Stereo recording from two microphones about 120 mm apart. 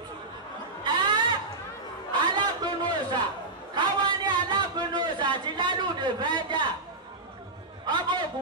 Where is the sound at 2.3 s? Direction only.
40° right (ahead or behind).